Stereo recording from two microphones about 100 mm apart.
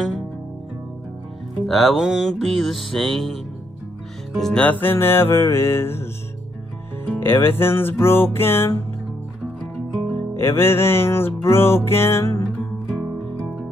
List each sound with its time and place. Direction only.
1.7 s music: centre (ahead or behind)
4.4 s music: 5° left (ahead or behind)
4.6 s music: 20° left (ahead or behind)
7.1 s music: 20° left (ahead or behind)
10.3 s music: 25° left (ahead or behind)